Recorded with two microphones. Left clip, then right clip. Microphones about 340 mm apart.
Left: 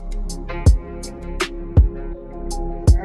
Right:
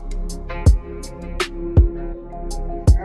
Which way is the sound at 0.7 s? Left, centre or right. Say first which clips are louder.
Even; centre.